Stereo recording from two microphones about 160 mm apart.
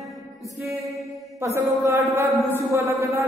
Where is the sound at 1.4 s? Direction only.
20° right (ahead or behind).